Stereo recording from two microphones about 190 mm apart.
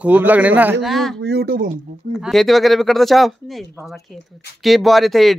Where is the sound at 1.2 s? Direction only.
60° right (ahead or behind).